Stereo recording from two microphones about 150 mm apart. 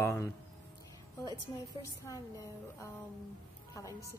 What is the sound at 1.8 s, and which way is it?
A woman's voice, 20° left (ahead or behind).